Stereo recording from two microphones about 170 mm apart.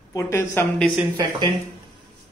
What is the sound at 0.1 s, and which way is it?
Speech, 15° left (ahead or behind).